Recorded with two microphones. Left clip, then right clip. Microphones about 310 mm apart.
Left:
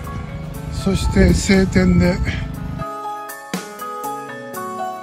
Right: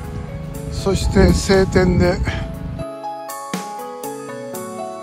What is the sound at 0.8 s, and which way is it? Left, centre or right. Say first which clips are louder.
Speech: right 2 dB; centre.